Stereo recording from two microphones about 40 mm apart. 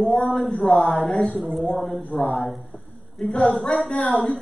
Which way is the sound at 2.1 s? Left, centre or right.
Centre.